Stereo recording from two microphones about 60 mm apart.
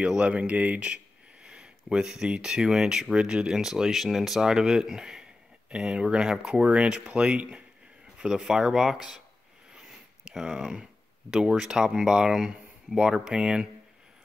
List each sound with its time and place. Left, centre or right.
0.0 s speech: centre